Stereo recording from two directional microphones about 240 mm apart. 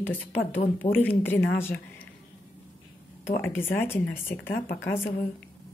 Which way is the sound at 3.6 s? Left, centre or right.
Centre.